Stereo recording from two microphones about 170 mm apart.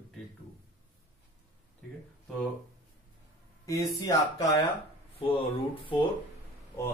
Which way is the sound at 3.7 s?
20° left (ahead or behind).